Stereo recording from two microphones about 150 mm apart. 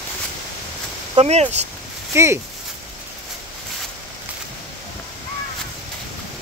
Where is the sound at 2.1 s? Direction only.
15° right (ahead or behind).